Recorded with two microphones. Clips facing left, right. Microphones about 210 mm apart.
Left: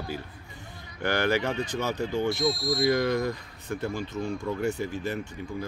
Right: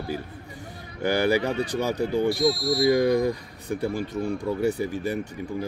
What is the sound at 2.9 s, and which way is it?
Speech, 15° right (ahead or behind).